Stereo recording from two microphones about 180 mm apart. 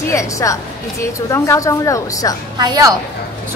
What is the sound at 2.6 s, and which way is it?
Speech, 20° right (ahead or behind).